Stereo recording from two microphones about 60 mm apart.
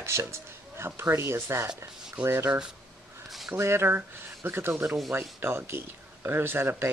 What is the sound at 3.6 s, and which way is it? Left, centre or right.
Speech, right.